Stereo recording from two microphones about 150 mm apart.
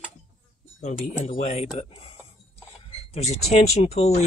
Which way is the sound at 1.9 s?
40° left (ahead or behind).